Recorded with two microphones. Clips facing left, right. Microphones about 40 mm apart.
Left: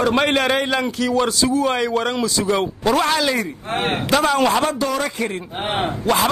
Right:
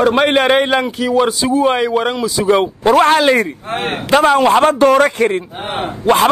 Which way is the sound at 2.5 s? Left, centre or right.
Right.